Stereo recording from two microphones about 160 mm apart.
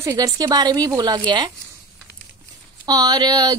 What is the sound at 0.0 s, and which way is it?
Speech, 20° right (ahead or behind).